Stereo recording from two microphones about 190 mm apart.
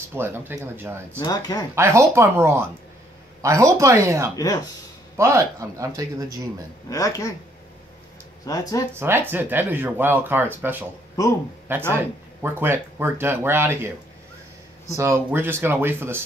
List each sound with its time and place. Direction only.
0.1 s speech: 10° right (ahead or behind)
1.2 s speech: 20° left (ahead or behind)
1.8 s speech: 15° right (ahead or behind)
6.9 s speech: 15° left (ahead or behind)
8.5 s speech: 20° left (ahead or behind)
8.9 s speech: 10° right (ahead or behind)
11.9 s speech: 10° right (ahead or behind)